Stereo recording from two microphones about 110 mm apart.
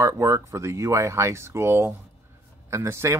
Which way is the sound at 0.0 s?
25° right (ahead or behind).